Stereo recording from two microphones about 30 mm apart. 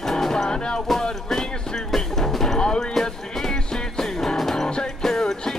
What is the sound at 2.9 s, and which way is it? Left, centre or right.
Music, centre.